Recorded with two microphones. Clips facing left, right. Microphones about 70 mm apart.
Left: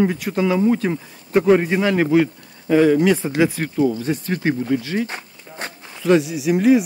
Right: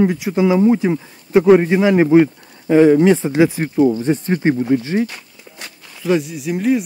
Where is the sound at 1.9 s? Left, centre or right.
Right.